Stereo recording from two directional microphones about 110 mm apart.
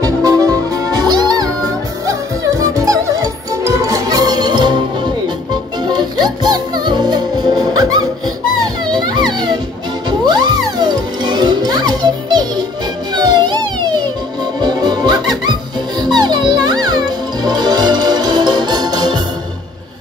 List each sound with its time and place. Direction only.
0.0 s music: 30° right (ahead or behind)
6.2 s music: 40° right (ahead or behind)
8.9 s music: 40° right (ahead or behind)